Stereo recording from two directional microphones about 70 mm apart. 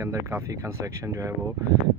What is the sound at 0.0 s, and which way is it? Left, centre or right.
Speech, right.